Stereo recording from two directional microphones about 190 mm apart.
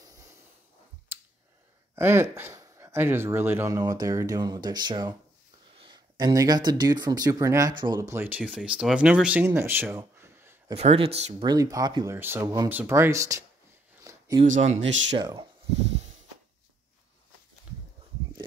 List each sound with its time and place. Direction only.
1.1 s a sound: 10° right (ahead or behind)
2.0 s speech: 10° right (ahead or behind)
10.7 s speech: 30° right (ahead or behind)
11.4 s speech: 20° right (ahead or behind)
14.0 s a sound: 15° right (ahead or behind)
14.4 s speech: 40° right (ahead or behind)
14.7 s speech: 75° right (ahead or behind)
15.1 s speech: 25° right (ahead or behind)
15.9 s a sound: 35° right (ahead or behind)